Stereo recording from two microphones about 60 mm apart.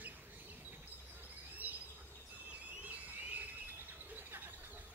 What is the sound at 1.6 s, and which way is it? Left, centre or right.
Bird, right.